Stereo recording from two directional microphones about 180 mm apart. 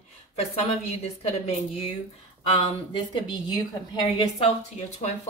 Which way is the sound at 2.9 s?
25° left (ahead or behind).